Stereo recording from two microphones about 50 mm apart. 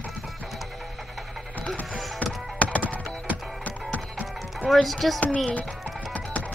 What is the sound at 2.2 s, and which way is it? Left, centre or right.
Music, left.